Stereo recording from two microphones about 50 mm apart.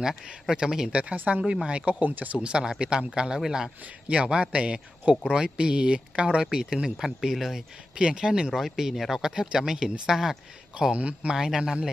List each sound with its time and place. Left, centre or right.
0.5 s speech: centre
1.1 s speech: right
1.4 s a man's voice: centre
2.0 s speech: right
2.3 s speech: centre
4.1 s a man's voice: centre
8.0 s speech: centre
11.0 s a man's voice: right
11.3 s speech: centre